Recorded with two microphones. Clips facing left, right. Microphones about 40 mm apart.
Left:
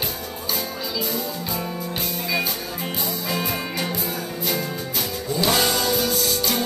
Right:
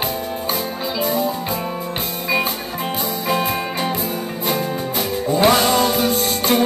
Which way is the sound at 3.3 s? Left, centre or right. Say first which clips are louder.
Right 7 dB; right.